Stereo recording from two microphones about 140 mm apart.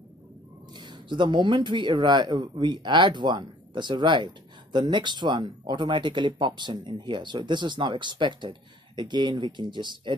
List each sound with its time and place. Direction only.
0.7 s speech: 30° right (ahead or behind)